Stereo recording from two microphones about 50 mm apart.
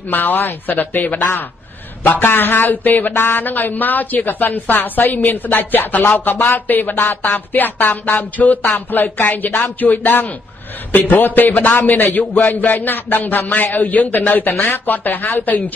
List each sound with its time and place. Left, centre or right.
0.1 s speech: left